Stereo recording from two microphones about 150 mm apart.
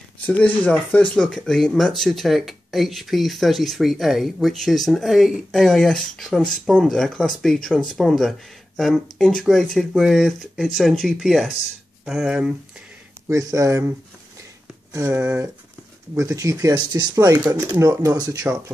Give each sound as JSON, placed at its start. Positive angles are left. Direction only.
{"t": 0.3, "sound": "speech", "side_deg": 10}
{"t": 13.3, "sound": "speech", "side_deg": -20}